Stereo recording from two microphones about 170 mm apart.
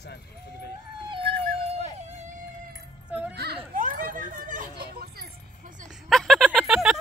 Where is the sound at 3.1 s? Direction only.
10° right (ahead or behind).